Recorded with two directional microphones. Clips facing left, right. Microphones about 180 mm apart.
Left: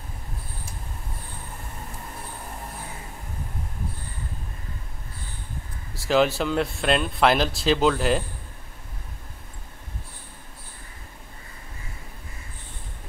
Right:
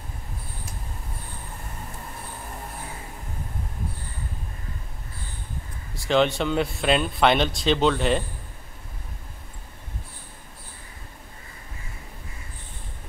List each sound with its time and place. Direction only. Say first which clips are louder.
5.9 s speech: even; 5° left (ahead or behind)